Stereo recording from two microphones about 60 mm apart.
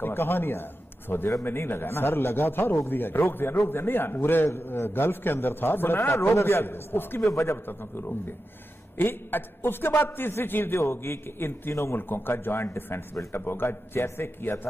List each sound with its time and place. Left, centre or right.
0.0 s a man's voice: left
2.9 s a man's voice: left
7.2 s a man's voice: left
7.6 s a man's voice: left
12.0 s a man's voice: left